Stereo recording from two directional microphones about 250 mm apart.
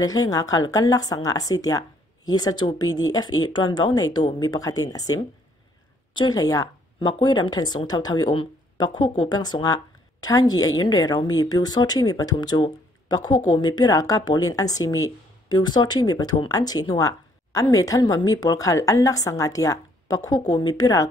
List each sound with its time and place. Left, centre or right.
0.0 s a woman's voice: centre